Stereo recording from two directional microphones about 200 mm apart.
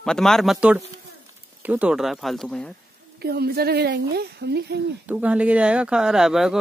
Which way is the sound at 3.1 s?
50° right (ahead or behind).